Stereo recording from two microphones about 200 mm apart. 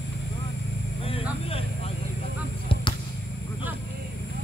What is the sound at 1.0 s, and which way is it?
Vehicle, 30° left (ahead or behind).